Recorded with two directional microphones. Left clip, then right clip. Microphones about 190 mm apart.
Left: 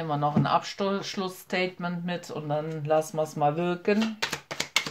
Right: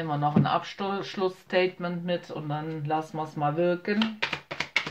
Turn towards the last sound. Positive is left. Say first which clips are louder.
# left 1 dB
turn(degrees=20)  # may be behind; listen again after turning